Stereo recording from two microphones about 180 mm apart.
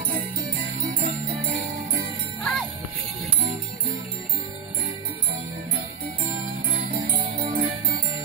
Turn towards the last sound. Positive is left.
turn(degrees=-50)  # may be behind; listen again after turning